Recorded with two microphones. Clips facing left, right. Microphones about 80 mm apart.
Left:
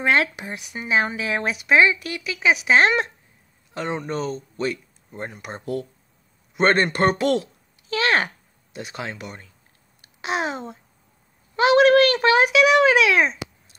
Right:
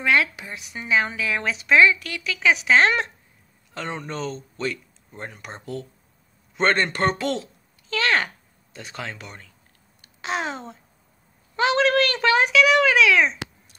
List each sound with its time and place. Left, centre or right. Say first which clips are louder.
0.0 s speech: left 1 dB; left; by 9.4 s centre
10.0 s a sound: left 2 dB; centre
11.5 s a child's voice: left 5 dB; centre